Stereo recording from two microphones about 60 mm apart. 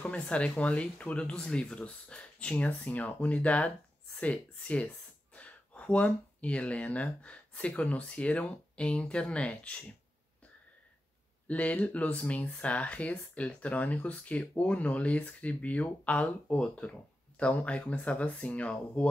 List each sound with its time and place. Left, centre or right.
0.0 s speech: centre
11.4 s speech: left